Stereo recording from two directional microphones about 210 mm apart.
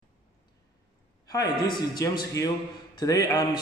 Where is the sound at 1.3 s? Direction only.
20° left (ahead or behind).